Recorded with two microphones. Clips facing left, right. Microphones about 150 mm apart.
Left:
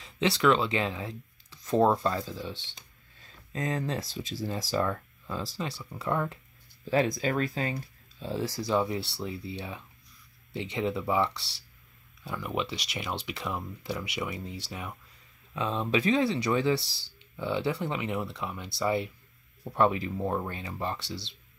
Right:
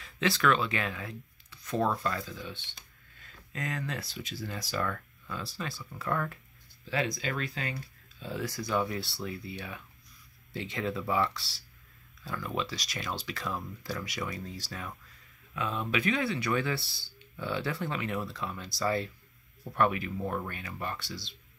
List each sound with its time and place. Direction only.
0.0 s speech: 25° left (ahead or behind)
2.7 s a sound: 30° left (ahead or behind)
4.0 s speech: 40° left (ahead or behind); by 6.4 s 20° left (ahead or behind)
6.8 s speech: 45° left (ahead or behind); by 15.0 s 15° left (ahead or behind)
15.5 s speech: 25° left (ahead or behind)